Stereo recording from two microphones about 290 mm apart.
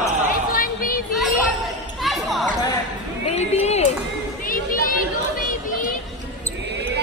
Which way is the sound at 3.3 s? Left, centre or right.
Left.